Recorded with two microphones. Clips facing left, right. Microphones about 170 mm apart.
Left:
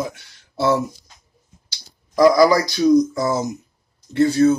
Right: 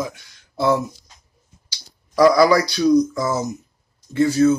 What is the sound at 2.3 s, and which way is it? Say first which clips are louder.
Speech: even; 25° left (ahead or behind).